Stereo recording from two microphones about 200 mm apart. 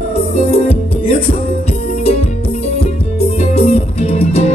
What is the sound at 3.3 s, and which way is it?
Music, 30° left (ahead or behind).